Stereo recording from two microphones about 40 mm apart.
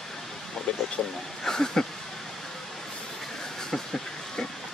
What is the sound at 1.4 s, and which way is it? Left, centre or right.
Speech, centre.